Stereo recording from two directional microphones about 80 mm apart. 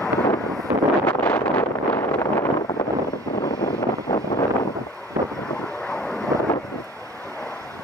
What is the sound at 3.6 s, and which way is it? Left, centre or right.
Vehicle, left.